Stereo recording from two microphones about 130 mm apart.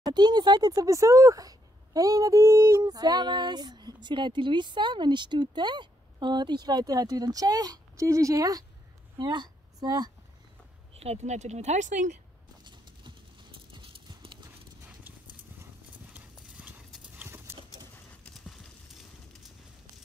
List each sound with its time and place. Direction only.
0.0 s a woman's voice: 35° right (ahead or behind)
10.9 s speech: 50° right (ahead or behind)
12.6 s clip-clop: 35° right (ahead or behind)
15.6 s clip-clop: 15° right (ahead or behind)
18.3 s clip-clop: centre (ahead or behind)